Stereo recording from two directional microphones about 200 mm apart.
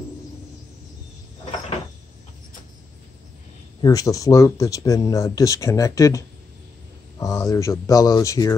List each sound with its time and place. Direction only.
3.8 s speech: 15° left (ahead or behind)